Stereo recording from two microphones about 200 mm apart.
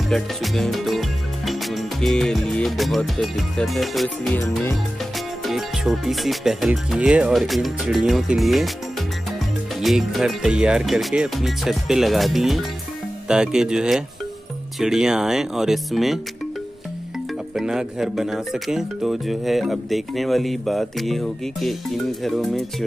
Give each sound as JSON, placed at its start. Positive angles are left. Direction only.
{"t": 0.1, "sound": "music", "side_deg": 0}
{"t": 5.4, "sound": "speech", "side_deg": 0}
{"t": 9.8, "sound": "speech", "side_deg": 0}
{"t": 17.6, "sound": "speech", "side_deg": -5}